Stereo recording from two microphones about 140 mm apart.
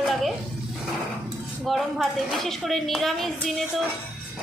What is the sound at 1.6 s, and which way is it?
A woman's voice, centre (ahead or behind).